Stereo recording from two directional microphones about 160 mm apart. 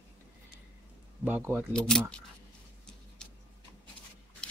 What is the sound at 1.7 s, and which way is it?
Speech, 5° left (ahead or behind).